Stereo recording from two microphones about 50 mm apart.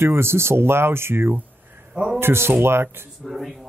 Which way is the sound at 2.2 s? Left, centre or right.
Right.